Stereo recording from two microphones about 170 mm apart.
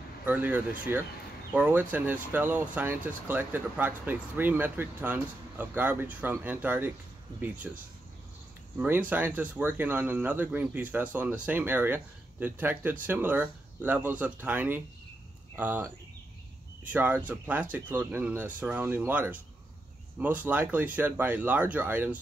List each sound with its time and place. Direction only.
0.2 s speech: 10° right (ahead or behind)